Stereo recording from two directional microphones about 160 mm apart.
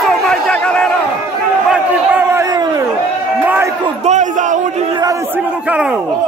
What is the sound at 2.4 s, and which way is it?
Crowd, 25° right (ahead or behind).